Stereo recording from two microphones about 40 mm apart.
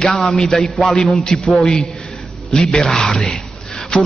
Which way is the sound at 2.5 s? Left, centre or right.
Centre.